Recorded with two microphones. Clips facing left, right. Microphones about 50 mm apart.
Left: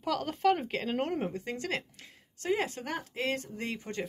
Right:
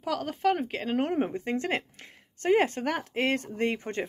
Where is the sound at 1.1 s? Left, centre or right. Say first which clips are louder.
Right 6 dB; right.